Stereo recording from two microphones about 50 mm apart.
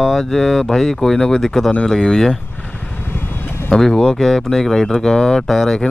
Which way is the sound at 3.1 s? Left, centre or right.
Left.